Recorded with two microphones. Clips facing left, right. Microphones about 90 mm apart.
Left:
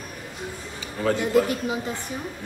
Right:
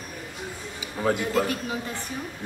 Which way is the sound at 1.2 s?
20° left (ahead or behind).